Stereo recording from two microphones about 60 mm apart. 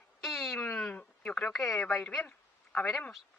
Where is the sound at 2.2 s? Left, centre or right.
Left.